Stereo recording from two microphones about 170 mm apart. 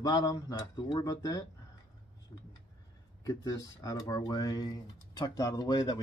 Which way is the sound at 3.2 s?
20° left (ahead or behind).